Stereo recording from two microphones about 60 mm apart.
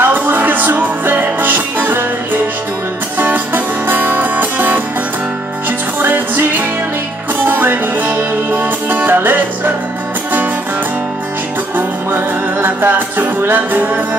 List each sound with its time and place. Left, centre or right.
0.0 s music: right
3.2 s music: right
5.9 s music: right
7.4 s music: right
11.7 s music: right